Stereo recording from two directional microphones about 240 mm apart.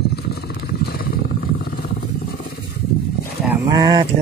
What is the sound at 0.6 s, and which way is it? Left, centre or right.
Vehicle, left.